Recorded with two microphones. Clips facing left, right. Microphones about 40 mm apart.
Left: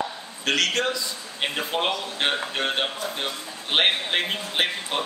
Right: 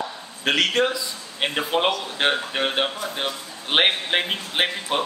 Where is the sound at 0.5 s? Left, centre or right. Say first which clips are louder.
Right 3 dB; centre.